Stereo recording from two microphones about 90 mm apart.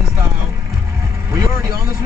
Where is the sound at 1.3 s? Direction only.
35° right (ahead or behind).